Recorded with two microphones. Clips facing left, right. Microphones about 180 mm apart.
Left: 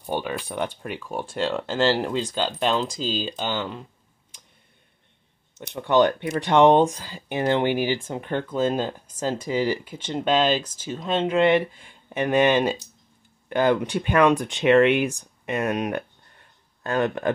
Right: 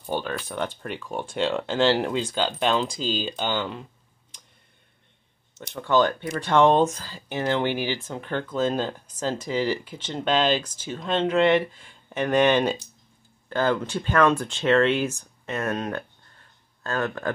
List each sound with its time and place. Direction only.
0.0 s speech: 10° left (ahead or behind)
3.0 s speech: 40° left (ahead or behind)
3.3 s speech: 5° left (ahead or behind)
5.8 s speech: 20° left (ahead or behind)